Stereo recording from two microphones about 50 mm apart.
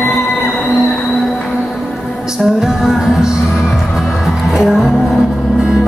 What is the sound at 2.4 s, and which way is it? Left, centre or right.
Music, centre.